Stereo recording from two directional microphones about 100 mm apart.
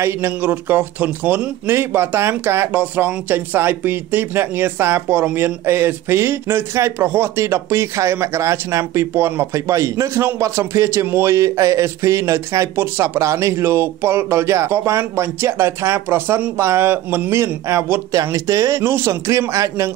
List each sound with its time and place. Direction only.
0.0 s a man's voice: 20° right (ahead or behind)